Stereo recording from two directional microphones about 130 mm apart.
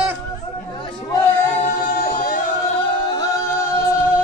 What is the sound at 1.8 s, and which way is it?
Music, 90° left.